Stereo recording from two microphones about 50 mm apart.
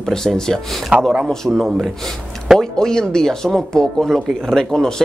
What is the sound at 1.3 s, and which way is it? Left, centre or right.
Speech, centre.